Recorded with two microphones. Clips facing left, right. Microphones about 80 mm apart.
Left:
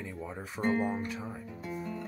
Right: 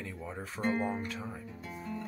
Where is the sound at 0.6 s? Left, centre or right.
Left.